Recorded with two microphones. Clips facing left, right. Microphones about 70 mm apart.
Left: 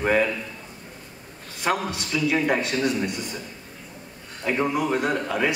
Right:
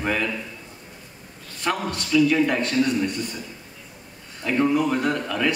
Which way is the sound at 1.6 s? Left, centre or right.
Centre.